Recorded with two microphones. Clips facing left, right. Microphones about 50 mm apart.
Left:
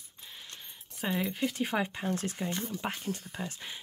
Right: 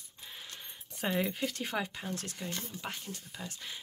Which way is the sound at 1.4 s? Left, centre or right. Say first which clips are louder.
Left 4 dB; centre.